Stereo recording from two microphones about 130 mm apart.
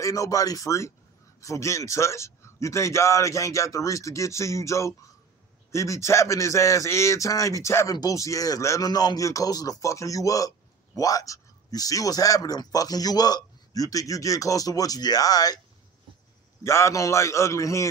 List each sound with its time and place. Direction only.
0.0 s speech: 25° left (ahead or behind)
16.6 s speech: 20° left (ahead or behind)